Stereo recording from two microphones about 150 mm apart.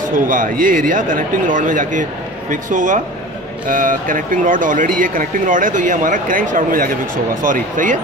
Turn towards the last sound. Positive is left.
turn(degrees=-60)  # may be behind; listen again after turning